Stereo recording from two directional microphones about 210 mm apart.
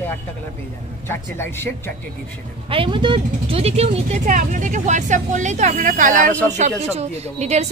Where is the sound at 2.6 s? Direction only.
25° right (ahead or behind).